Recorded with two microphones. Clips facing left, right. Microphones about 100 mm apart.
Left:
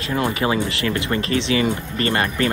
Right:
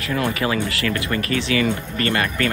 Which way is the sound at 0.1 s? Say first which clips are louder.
Left 1 dB; 25° left (ahead or behind).